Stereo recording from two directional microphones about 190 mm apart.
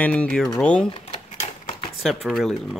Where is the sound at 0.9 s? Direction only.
30° left (ahead or behind).